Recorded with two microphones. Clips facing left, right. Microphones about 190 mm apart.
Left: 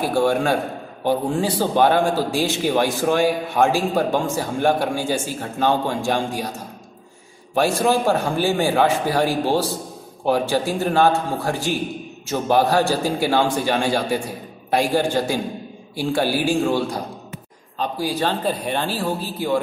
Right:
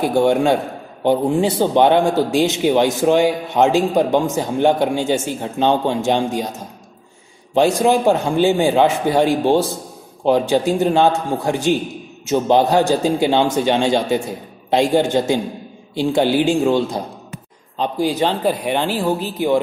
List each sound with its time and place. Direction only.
0.0 s a man's voice: 20° right (ahead or behind)
7.5 s a man's voice: 20° right (ahead or behind)